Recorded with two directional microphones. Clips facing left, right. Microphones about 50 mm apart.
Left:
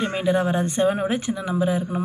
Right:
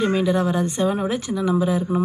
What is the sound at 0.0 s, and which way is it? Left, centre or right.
A woman's voice, left.